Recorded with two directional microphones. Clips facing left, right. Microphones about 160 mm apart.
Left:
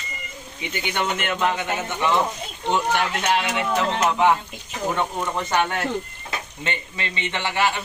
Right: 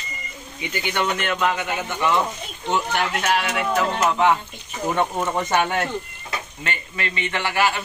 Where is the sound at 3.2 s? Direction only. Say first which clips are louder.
Even; 25° left (ahead or behind).